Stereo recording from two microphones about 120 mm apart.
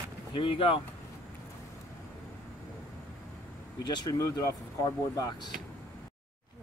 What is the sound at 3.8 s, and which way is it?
Speech, 35° left (ahead or behind).